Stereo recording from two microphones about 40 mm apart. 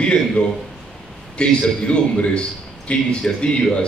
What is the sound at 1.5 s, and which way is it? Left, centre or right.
A man's voice, left.